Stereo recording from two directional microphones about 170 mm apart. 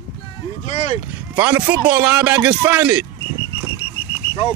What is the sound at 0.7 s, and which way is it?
Speech, 40° left (ahead or behind).